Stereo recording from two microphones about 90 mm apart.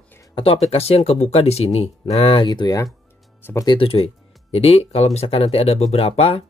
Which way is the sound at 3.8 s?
90° left.